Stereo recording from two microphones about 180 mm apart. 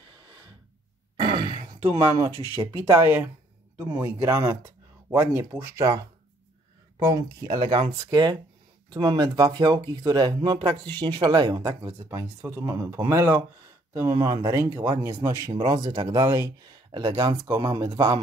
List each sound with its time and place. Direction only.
1.2 s speech: 25° right (ahead or behind)